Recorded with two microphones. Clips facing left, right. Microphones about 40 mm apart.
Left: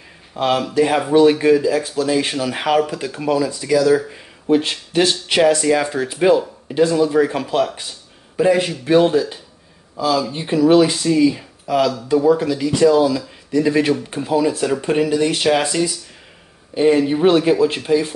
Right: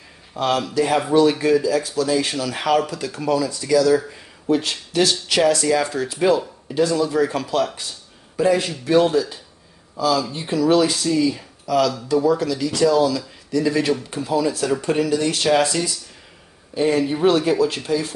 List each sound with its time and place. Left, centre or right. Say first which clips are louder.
0.4 s speech: left 3 dB; left
16.7 s speech: left 4 dB; left